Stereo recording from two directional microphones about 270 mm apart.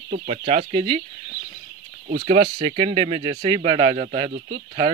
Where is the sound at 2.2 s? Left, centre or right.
Centre; by 4.6 s right.